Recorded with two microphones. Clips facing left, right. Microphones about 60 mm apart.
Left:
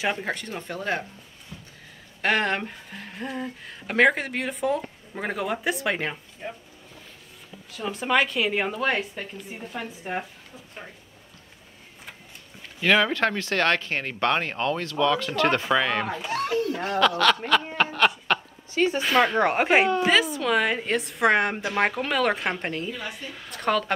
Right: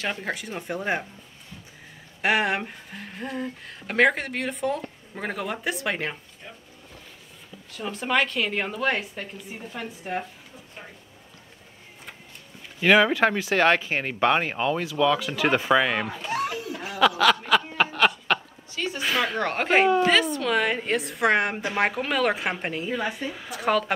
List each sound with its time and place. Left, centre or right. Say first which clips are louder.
0.0 s speech: left 3 dB; centre
0.3 s speech: right 1 dB; centre
2.2 s speech: right 1 dB; centre
6.4 s speech: left 9 dB; left
7.7 s speech: left 1 dB; centre
12.8 s speech: right 3 dB; centre
17.7 s a sound: even; centre
18.9 s speech: left 2 dB; centre
19.3 s speech: left 2 dB; centre